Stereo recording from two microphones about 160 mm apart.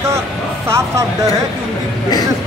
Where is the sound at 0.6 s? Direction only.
20° right (ahead or behind).